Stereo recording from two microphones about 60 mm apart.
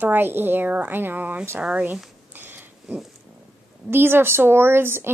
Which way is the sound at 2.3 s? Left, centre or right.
Right.